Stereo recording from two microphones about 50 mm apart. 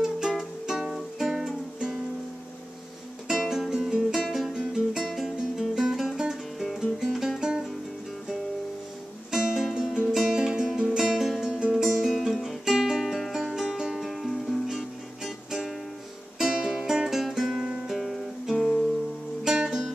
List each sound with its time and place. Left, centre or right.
0.3 s music: centre
3.3 s music: centre
7.3 s music: centre
9.3 s music: centre
19.4 s music: centre